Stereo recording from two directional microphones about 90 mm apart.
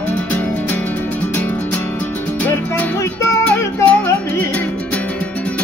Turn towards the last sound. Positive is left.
turn(degrees=25)  # may be behind; listen again after turning